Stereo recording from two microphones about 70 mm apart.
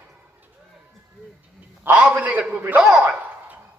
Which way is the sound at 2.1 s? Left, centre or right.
Right.